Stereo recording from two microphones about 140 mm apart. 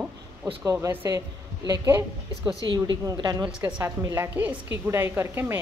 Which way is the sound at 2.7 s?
30° right (ahead or behind).